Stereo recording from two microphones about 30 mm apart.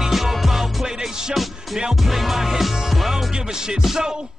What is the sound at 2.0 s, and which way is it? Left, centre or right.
Music, centre.